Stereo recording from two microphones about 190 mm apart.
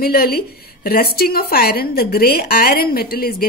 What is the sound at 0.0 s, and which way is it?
A woman's voice, 55° left (ahead or behind).